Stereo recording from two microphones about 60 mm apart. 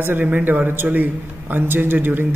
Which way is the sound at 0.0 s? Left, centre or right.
Right.